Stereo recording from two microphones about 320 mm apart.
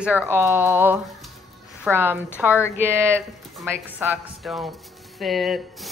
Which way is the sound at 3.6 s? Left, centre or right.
Centre.